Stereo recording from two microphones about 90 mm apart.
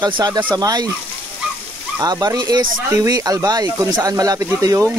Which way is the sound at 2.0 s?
50° right (ahead or behind).